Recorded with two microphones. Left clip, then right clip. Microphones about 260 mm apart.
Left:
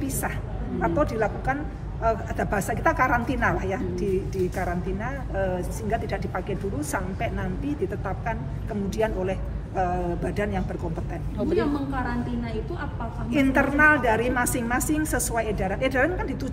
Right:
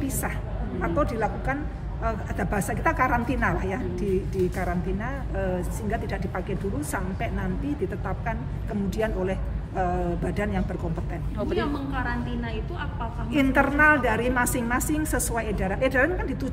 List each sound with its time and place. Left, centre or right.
0.7 s a woman's voice: centre
5.4 s a woman's voice: centre
8.9 s a woman's voice: centre
11.3 s a woman's voice: right
13.3 s a woman's voice: centre